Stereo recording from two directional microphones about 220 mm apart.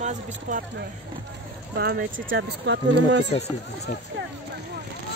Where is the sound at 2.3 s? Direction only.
55° right (ahead or behind).